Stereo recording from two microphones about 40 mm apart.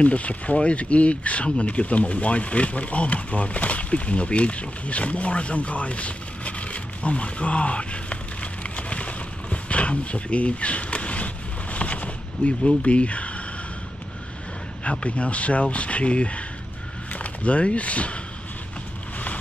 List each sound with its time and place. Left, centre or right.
0.0 s speech: left
14.9 s speech: left